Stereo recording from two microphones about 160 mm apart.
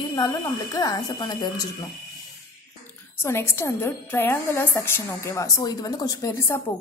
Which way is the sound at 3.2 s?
15° left (ahead or behind).